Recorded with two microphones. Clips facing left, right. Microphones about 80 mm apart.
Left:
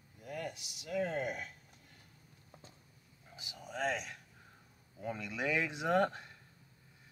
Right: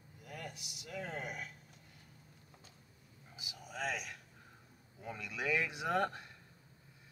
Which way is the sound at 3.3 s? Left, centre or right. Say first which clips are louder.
Left 2 dB; centre.